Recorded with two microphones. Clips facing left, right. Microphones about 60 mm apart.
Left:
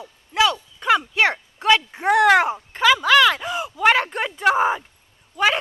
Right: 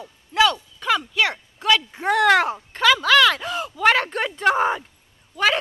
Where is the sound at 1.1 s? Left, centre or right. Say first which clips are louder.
Left 3 dB; left.